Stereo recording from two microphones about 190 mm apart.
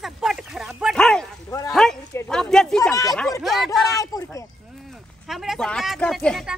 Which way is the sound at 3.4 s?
Centre (ahead or behind).